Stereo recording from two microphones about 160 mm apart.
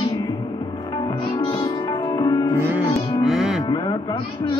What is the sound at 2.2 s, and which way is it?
Music, 20° left (ahead or behind).